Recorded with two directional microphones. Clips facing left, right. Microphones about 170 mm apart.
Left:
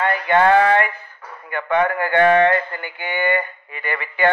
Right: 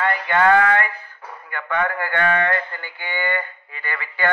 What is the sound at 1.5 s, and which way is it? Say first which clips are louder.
Speech: left 5 dB; 20° left (ahead or behind).